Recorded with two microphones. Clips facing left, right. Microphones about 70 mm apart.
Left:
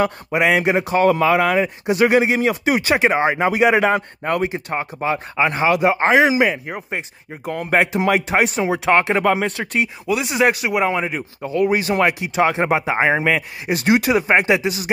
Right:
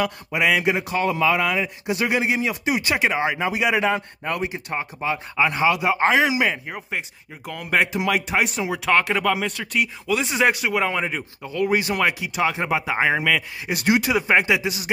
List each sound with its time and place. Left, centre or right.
0.0 s speech: left
3.3 s speech: left
7.4 s speech: left
10.0 s speech: centre
12.4 s speech: left